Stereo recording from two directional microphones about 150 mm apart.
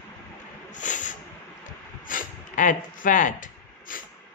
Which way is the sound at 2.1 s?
60° left (ahead or behind).